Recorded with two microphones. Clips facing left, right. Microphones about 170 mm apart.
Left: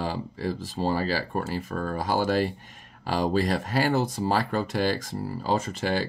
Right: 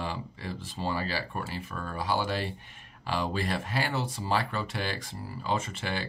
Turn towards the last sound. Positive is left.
turn(degrees=40)  # may be behind; listen again after turning